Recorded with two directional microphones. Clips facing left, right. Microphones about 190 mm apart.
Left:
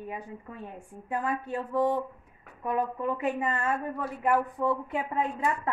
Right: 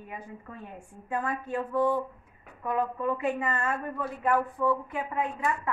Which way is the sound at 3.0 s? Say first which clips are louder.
Even; 20° left (ahead or behind).